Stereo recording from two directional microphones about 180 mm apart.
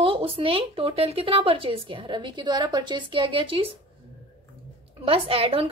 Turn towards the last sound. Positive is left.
turn(degrees=-30)  # may be behind; listen again after turning